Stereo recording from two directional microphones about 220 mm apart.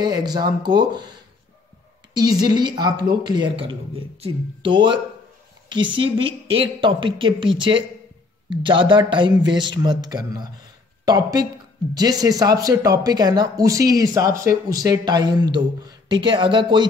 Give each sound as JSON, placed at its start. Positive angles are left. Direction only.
{"t": 0.0, "sound": "a woman's voice", "side_deg": -20}
{"t": 2.1, "sound": "a woman's voice", "side_deg": -20}